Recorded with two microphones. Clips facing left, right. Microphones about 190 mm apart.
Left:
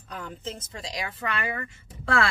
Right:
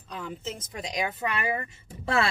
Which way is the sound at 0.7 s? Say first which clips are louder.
Right 4 dB; 20° right (ahead or behind).